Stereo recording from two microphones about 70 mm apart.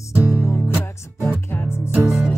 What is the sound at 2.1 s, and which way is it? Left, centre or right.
Music, centre.